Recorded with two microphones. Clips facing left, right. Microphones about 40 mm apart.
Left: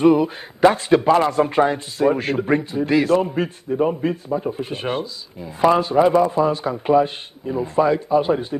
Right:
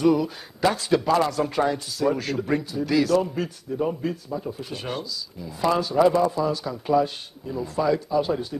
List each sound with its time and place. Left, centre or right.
0.0 s a man's voice: left